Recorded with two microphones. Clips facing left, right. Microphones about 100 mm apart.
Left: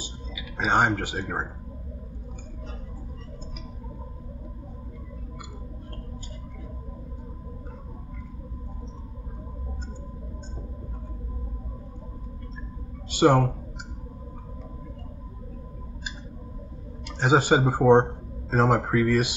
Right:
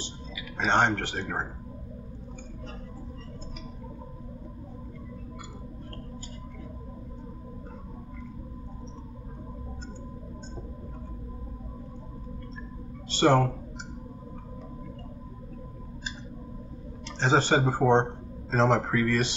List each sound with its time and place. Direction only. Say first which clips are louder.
0.6 s speech: left 2 dB; 10° left (ahead or behind)
13.1 s speech: left 2 dB; 10° left (ahead or behind)
17.2 s speech: left 3 dB; 10° left (ahead or behind)